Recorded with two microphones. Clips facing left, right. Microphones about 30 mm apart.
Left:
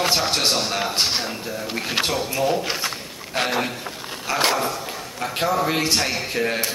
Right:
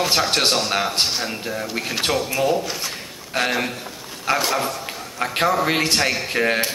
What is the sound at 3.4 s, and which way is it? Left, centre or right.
Speech, centre.